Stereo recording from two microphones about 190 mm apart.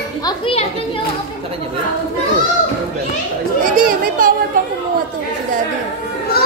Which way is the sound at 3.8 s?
45° right (ahead or behind).